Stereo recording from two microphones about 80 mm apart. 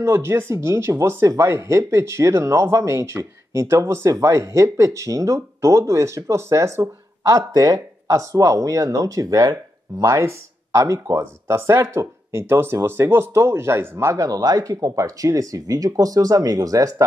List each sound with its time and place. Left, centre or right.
0.0 s speech: right